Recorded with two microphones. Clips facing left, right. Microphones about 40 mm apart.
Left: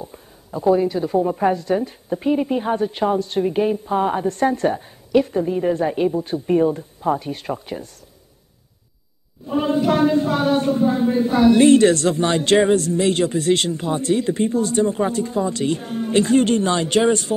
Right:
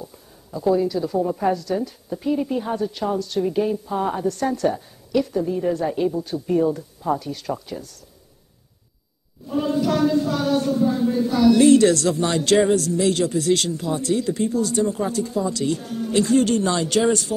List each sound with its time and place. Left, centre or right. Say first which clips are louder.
0.0 s a woman's voice: left 3 dB; left
9.5 s a woman's voice: left 3 dB; left